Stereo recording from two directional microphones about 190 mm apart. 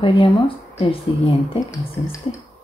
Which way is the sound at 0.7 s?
30° left (ahead or behind).